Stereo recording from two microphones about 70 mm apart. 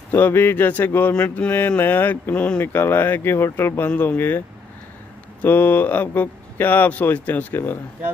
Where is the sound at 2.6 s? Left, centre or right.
Left.